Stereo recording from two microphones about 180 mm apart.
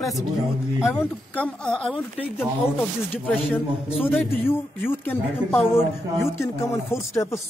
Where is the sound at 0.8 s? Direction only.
5° left (ahead or behind).